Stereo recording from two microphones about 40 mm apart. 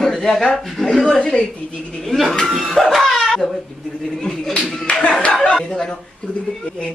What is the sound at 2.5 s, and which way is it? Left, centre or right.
Speech, centre.